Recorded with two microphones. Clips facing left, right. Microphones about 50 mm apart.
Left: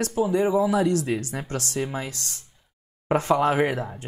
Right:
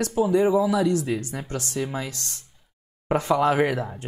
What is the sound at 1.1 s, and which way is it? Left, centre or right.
Speech, left.